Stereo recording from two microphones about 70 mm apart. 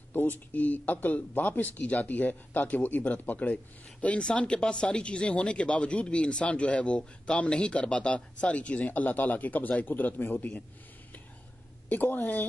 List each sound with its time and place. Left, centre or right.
0.1 s speech: left
11.9 s speech: left